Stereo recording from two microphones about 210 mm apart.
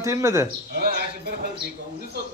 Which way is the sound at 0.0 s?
15° right (ahead or behind).